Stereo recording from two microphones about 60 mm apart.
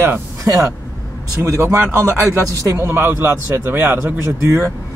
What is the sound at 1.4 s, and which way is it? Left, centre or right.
A man's voice, right.